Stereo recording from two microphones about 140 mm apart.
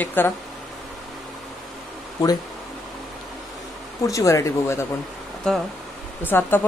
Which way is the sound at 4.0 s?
20° left (ahead or behind).